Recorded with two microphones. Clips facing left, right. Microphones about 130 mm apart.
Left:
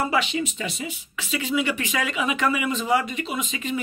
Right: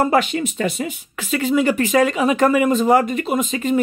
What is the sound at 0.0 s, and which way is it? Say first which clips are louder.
Speech: right 7 dB; 50° right (ahead or behind).